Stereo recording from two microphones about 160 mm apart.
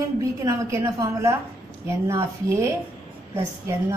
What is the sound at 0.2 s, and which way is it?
A woman's voice, 20° right (ahead or behind).